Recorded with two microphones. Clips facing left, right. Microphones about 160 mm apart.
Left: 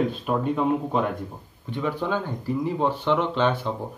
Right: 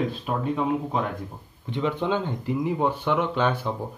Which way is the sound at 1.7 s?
20° right (ahead or behind).